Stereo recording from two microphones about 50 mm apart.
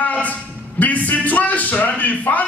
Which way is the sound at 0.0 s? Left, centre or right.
Left.